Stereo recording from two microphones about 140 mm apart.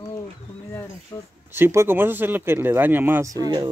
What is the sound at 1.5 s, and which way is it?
Speech, 20° right (ahead or behind).